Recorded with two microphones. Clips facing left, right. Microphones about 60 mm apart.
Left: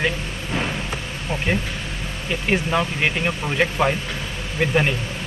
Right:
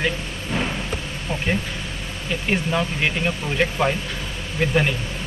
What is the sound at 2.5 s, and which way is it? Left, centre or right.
Speech, centre.